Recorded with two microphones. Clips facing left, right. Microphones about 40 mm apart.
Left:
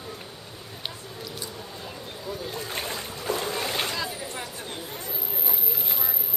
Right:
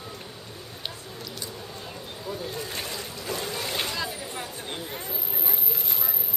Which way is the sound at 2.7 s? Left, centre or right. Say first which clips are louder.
Left 2 dB; left.